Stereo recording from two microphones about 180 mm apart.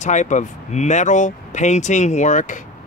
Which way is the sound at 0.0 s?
40° left (ahead or behind).